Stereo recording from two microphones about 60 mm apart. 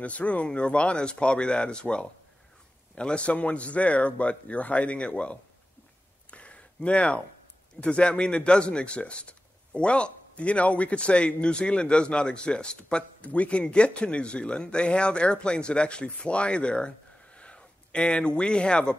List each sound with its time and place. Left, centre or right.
0.0 s speech: left
6.3 s a sound: left
7.8 s speech: centre